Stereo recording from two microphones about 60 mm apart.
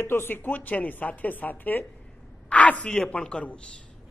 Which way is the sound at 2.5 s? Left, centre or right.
Left.